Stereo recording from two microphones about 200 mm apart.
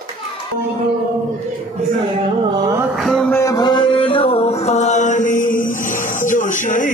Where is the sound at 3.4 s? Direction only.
15° left (ahead or behind).